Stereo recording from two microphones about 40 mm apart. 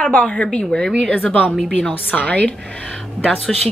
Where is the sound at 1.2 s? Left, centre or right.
Left.